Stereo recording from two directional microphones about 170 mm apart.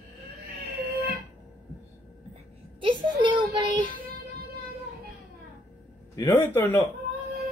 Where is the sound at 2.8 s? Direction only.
30° right (ahead or behind).